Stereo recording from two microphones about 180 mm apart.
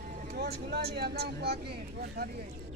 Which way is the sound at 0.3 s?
55° right (ahead or behind).